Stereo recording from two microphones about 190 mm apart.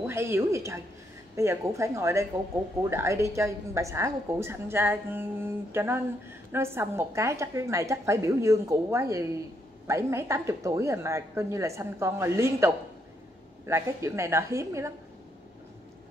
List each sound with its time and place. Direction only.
0.0 s a woman's voice: 15° right (ahead or behind)